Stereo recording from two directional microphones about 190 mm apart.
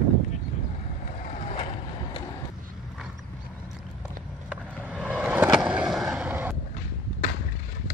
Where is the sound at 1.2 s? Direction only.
40° left (ahead or behind).